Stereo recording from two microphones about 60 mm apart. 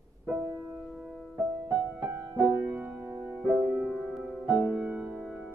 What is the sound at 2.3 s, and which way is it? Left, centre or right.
Music, right.